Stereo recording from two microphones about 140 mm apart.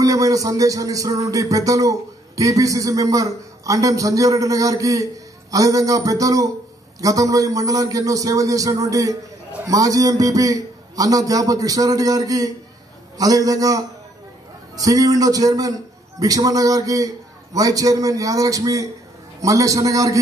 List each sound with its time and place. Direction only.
0.0 s music: 25° right (ahead or behind)